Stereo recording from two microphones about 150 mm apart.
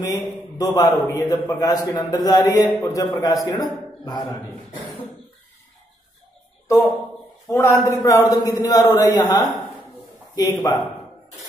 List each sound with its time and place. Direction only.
0.1 s a man's voice: 25° left (ahead or behind)
7.4 s a man's voice: 20° left (ahead or behind)